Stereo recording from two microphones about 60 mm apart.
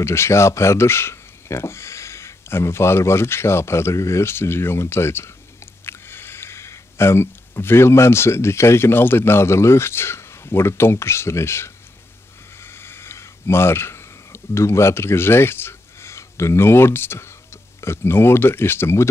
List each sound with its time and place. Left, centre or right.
0.0 s speech: left
12.6 s a sound: left
17.7 s speech: left